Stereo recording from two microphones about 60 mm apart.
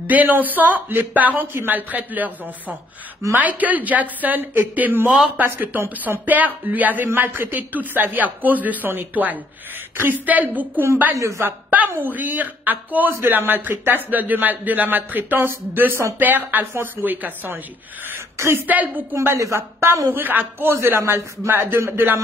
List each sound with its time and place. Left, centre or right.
0.0 s a woman's voice: right
3.3 s a woman's voice: right
11.1 s speech: right
11.4 s a woman's voice: right
18.7 s a woman's voice: right
19.3 s speech: right
20.1 s speech: right
20.7 s speech: right